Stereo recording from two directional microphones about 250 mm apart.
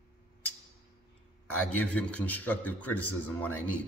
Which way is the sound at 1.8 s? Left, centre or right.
Centre.